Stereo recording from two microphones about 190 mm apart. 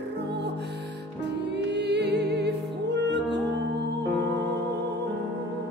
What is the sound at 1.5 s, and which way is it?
Music, 65° right (ahead or behind).